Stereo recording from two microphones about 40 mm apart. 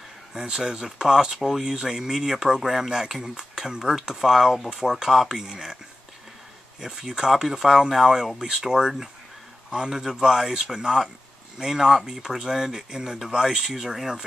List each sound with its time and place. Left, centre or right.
0.3 s speech: centre
6.8 s speech: centre